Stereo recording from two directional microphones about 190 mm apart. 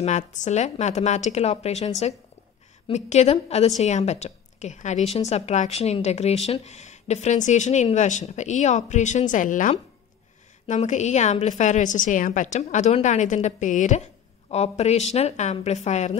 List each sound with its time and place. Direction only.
0.0 s a woman's voice: 40° left (ahead or behind)
2.9 s a woman's voice: 35° left (ahead or behind)